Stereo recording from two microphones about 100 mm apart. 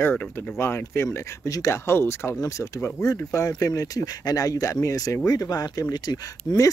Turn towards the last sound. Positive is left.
turn(degrees=40)  # may be behind; listen again after turning